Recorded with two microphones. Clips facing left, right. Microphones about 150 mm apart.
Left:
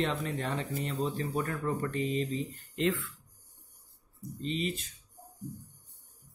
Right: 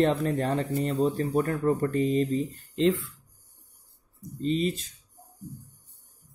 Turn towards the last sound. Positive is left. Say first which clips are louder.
# right 7 dB
turn(degrees=-35)  # may be behind; listen again after turning